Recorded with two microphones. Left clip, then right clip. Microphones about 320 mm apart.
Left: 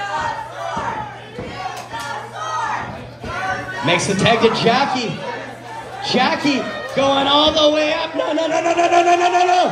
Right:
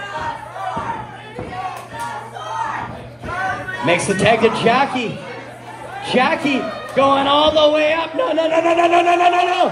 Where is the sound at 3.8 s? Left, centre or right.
Right.